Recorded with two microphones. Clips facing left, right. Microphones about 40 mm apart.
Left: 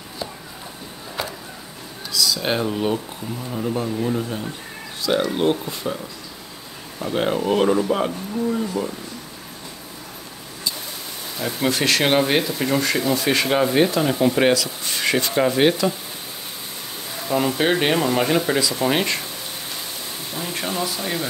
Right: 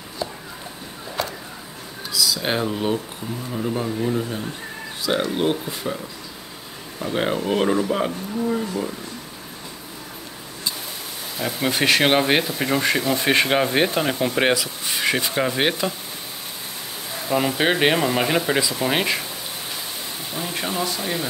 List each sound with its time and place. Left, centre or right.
2.1 s speech: centre
7.0 s speech: centre
11.3 s speech: centre
11.7 s speech: centre
13.1 s speech: right; by 15.9 s centre
17.3 s speech: centre
18.8 s speech: centre
20.3 s speech: centre